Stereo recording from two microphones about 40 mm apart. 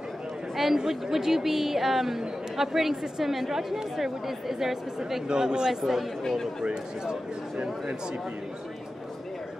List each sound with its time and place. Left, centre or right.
0.6 s a woman's voice: centre
5.3 s speech: centre
5.7 s a woman's voice: centre
6.6 s speech: right